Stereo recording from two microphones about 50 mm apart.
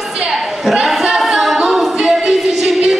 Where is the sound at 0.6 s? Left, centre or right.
Centre.